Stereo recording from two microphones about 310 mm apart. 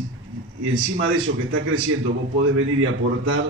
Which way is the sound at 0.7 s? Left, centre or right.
Right.